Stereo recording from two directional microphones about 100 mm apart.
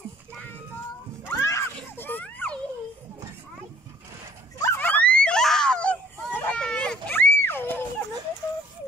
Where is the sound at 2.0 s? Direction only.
20° left (ahead or behind).